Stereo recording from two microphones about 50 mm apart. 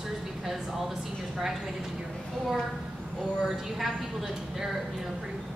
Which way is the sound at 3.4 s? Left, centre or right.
Centre.